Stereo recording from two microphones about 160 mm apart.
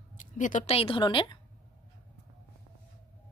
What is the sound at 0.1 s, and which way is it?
Speech, 55° left (ahead or behind).